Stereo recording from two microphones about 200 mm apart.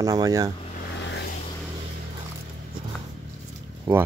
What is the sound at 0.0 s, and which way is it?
Speech, 15° right (ahead or behind).